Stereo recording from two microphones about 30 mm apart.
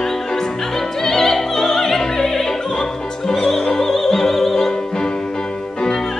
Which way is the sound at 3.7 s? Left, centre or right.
Centre.